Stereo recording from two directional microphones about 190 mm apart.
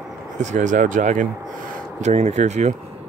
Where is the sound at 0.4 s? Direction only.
40° right (ahead or behind).